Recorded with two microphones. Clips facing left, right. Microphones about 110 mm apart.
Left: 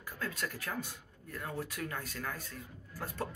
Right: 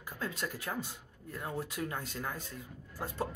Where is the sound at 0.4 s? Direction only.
15° right (ahead or behind).